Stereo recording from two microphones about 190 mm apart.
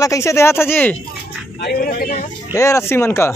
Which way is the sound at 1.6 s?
55° left (ahead or behind).